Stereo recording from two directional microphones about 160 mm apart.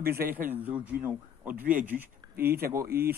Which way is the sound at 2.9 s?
75° right (ahead or behind).